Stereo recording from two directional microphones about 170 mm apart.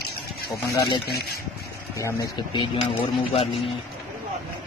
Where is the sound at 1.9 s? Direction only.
25° left (ahead or behind).